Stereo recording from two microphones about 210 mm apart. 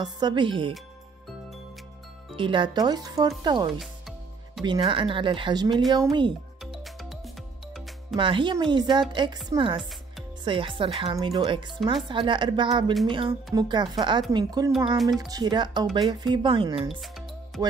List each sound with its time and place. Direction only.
0.0 s speech: 20° right (ahead or behind)
2.3 s speech: 25° right (ahead or behind)
6.6 s music: centre (ahead or behind)
8.2 s speech: 25° right (ahead or behind)